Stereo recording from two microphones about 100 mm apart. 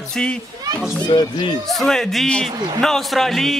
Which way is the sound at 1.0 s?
50° left (ahead or behind).